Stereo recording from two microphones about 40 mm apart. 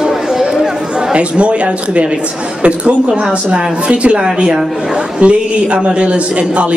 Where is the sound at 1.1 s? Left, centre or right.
Right.